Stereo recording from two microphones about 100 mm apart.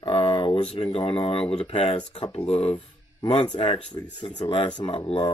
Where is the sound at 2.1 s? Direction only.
65° left (ahead or behind).